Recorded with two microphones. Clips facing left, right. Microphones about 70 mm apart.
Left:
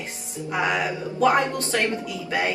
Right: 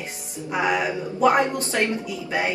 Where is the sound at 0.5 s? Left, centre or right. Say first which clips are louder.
Right 1 dB; centre.